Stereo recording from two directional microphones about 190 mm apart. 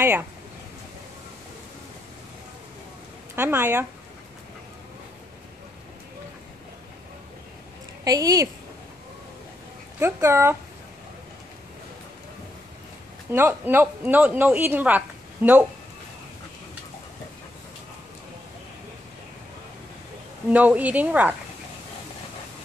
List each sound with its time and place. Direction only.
0.0 s speech: 10° right (ahead or behind)
3.3 s speech: 10° right (ahead or behind)
8.0 s a woman's voice: 20° right (ahead or behind)
9.9 s speech: 10° right (ahead or behind)
13.3 s speech: 10° right (ahead or behind)
20.4 s speech: 10° right (ahead or behind)